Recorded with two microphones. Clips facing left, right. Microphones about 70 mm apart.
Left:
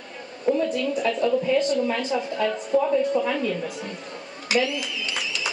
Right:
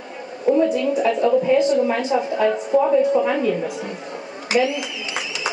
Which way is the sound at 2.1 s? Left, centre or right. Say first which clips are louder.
Right 6 dB; right.